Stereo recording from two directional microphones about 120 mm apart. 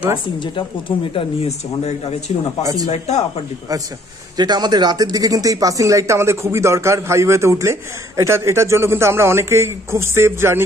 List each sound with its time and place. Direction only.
0.4 s speech: 45° left (ahead or behind)
1.9 s speech: 65° left (ahead or behind)
2.6 s speech: 30° right (ahead or behind)
2.9 s speech: 65° left (ahead or behind)
4.4 s speech: 35° right (ahead or behind)